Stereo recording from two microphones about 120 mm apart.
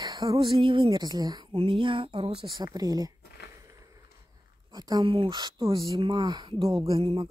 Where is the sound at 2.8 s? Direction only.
30° right (ahead or behind).